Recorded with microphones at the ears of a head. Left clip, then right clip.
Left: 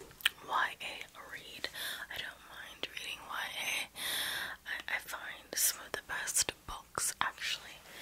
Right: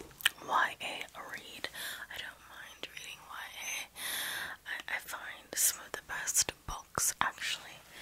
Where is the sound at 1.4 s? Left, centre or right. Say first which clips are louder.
Left 3 dB; centre.